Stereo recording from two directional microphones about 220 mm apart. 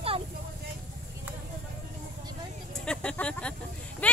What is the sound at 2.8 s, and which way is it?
Speech, 5° left (ahead or behind).